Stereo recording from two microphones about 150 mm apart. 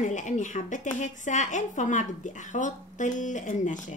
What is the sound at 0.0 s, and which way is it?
Speech, 55° left (ahead or behind).